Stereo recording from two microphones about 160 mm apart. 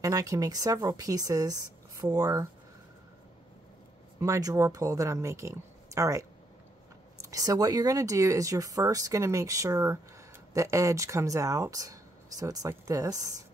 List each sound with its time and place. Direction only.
0.0 s speech: 20° right (ahead or behind)
4.2 s speech: 20° right (ahead or behind)